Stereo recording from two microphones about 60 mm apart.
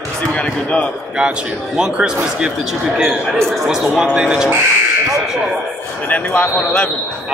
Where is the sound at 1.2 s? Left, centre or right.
Centre.